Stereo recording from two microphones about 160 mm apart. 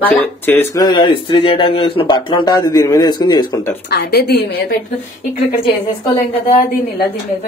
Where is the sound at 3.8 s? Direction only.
90° left; by 4.8 s 75° left (ahead or behind).